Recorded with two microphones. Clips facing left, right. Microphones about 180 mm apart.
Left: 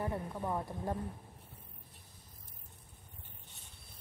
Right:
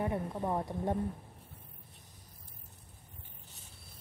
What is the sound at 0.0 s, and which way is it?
Speech, 20° right (ahead or behind).